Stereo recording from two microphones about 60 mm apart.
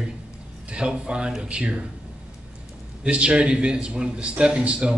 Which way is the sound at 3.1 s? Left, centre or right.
Centre.